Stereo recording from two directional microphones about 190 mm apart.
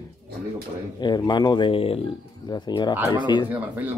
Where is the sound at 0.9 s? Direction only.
25° left (ahead or behind).